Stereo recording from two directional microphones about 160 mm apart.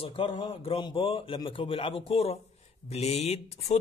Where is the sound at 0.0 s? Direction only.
30° left (ahead or behind).